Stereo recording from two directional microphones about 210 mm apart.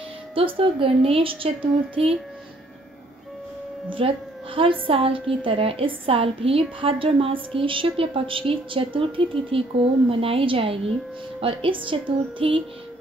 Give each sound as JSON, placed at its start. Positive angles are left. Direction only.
{"t": 0.3, "sound": "a woman's voice", "side_deg": -25}
{"t": 4.0, "sound": "a woman's voice", "side_deg": -25}